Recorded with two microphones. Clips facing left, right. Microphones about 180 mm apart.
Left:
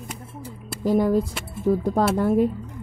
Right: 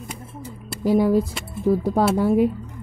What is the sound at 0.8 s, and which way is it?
Speech, 5° right (ahead or behind).